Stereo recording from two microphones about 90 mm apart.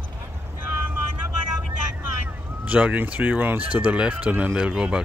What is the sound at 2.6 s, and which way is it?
Speech, 15° right (ahead or behind).